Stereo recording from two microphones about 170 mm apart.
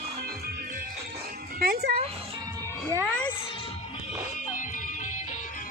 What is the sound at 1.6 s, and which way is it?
Music, 60° right (ahead or behind).